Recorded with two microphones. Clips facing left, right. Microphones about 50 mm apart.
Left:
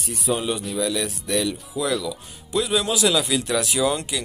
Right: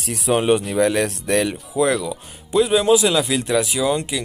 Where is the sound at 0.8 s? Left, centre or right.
Right.